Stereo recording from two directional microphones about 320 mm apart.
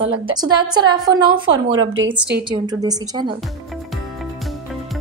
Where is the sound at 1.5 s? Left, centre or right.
Right.